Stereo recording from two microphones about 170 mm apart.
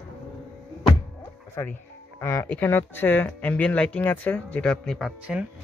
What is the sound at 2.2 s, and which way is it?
Speech, 15° left (ahead or behind).